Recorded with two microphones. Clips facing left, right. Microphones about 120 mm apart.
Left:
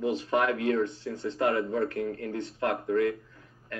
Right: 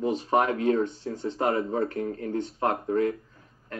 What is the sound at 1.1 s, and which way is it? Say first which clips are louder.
Speech: right 1 dB; 30° right (ahead or behind).